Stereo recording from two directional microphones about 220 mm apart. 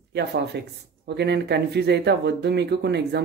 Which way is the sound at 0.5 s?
50° right (ahead or behind).